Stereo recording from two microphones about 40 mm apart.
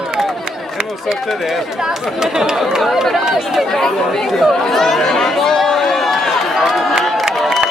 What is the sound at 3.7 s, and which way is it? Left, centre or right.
Speech, centre.